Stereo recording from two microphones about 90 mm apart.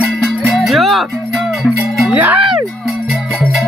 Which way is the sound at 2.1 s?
20° right (ahead or behind).